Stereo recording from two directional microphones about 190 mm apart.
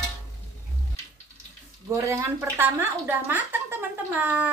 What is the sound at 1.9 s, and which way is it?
Speech, 15° right (ahead or behind).